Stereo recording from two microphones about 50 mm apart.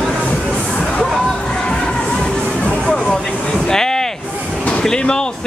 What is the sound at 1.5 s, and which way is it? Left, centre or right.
Music, centre.